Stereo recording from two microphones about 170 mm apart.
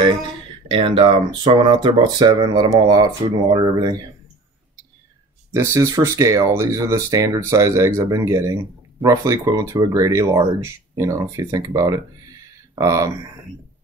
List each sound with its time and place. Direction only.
0.7 s speech: 30° right (ahead or behind)
5.5 s speech: 15° right (ahead or behind)